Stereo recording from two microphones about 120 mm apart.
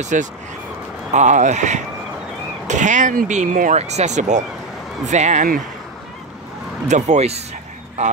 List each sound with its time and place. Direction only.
0.0 s speech: 90° right
6.9 s speech: 70° right (ahead or behind)